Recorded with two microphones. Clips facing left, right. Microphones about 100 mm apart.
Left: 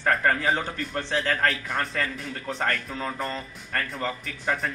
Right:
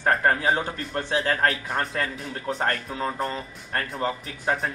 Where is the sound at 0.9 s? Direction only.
10° right (ahead or behind).